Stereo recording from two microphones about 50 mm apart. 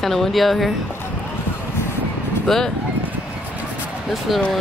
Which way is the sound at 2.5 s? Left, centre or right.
Centre.